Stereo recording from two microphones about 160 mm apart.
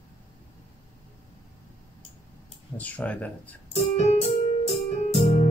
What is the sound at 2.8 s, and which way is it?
Speech, 10° left (ahead or behind).